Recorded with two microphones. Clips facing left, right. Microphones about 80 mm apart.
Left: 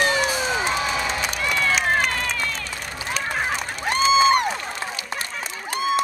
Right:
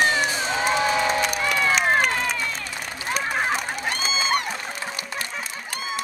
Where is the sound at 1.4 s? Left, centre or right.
Centre.